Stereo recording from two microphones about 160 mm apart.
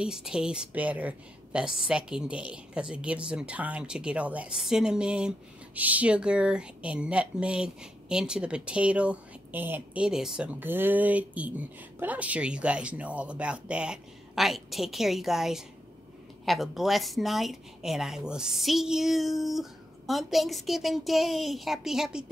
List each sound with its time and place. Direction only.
0.0 s speech: 5° right (ahead or behind)